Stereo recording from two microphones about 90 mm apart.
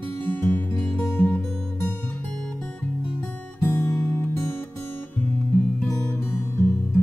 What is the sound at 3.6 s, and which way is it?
Music, 15° left (ahead or behind).